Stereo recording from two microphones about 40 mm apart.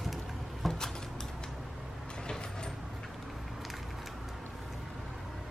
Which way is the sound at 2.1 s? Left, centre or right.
Centre.